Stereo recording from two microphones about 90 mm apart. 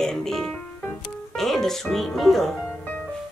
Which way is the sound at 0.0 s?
5° left (ahead or behind).